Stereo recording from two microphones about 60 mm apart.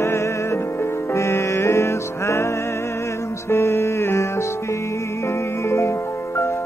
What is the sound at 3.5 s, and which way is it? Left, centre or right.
Music, left.